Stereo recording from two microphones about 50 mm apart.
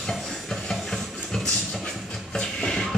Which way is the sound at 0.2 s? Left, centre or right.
Centre.